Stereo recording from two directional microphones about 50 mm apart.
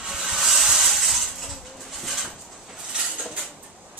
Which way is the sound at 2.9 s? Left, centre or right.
Centre.